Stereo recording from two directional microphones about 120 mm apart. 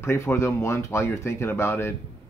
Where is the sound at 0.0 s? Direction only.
20° left (ahead or behind).